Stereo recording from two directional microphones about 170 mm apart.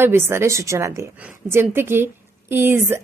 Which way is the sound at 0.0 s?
15° right (ahead or behind).